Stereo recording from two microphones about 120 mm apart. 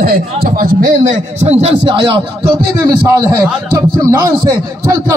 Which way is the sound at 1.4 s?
60° right (ahead or behind).